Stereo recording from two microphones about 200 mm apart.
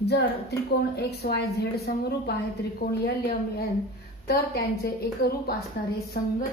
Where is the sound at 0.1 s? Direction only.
55° left (ahead or behind).